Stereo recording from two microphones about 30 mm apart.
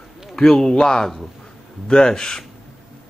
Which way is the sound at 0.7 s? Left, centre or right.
Left.